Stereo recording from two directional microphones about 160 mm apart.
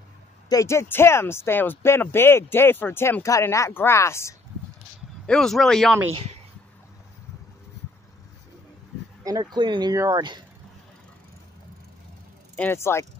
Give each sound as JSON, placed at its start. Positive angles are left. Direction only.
{"t": 0.5, "sound": "speech", "side_deg": 20}
{"t": 5.2, "sound": "speech", "side_deg": 5}
{"t": 9.2, "sound": "speech", "side_deg": -25}
{"t": 12.5, "sound": "speech", "side_deg": 15}